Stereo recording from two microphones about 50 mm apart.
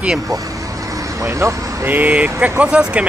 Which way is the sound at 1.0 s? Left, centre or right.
Right.